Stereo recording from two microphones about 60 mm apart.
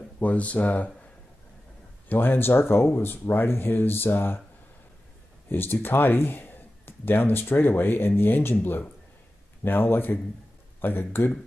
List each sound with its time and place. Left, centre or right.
0.2 s speech: left
2.0 s speech: left
5.5 s speech: left